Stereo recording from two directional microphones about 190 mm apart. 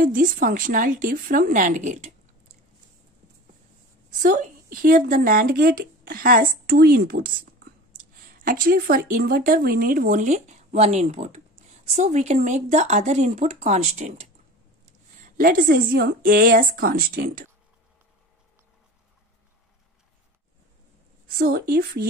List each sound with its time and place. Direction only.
0.0 s speech: 45° right (ahead or behind)
4.1 s speech: 45° right (ahead or behind)
15.3 s speech: 45° right (ahead or behind)
21.3 s speech: 50° right (ahead or behind)